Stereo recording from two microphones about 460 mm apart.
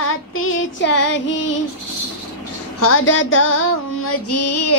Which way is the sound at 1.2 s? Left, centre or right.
Left.